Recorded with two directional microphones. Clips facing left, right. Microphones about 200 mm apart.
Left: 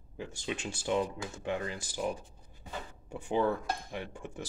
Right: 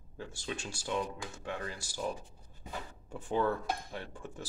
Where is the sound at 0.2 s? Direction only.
15° left (ahead or behind).